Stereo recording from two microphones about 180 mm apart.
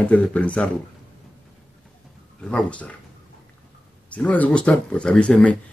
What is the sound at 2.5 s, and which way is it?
Speech, 5° left (ahead or behind).